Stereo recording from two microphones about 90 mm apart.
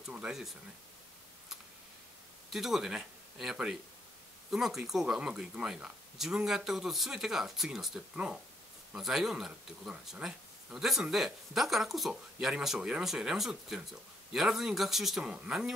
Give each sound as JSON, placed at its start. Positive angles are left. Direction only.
{"t": 0.1, "sound": "speech", "side_deg": -5}
{"t": 2.5, "sound": "speech", "side_deg": -5}